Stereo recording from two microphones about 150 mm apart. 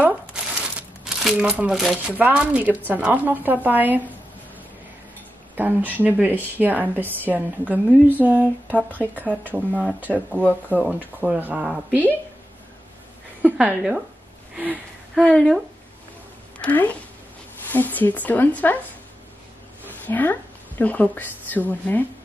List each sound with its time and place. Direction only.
0.0 s crumpling: 5° right (ahead or behind)
2.9 s a woman's voice: 10° right (ahead or behind)
5.6 s a woman's voice: 10° right (ahead or behind)
10.4 s speech: 10° left (ahead or behind)
11.1 s a woman's voice: 10° right (ahead or behind)
13.4 s a woman's voice: 5° right (ahead or behind)
15.1 s a woman's voice: 5° left (ahead or behind)
19.9 s a woman's voice: 10° left (ahead or behind)